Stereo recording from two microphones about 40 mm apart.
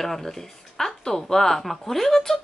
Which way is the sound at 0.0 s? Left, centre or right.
Centre.